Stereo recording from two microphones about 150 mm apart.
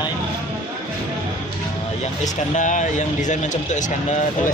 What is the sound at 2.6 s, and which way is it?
Speech, 55° left (ahead or behind).